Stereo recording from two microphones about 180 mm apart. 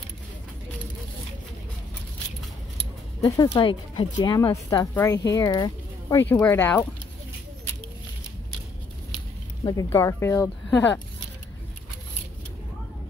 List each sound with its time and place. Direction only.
3.4 s speech: 25° left (ahead or behind); by 6.9 s 10° left (ahead or behind)
9.7 s speech: 20° left (ahead or behind)